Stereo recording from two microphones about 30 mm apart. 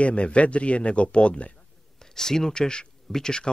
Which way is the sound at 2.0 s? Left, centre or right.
Centre.